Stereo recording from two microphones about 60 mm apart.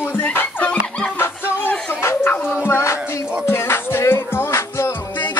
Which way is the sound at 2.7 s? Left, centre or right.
Left.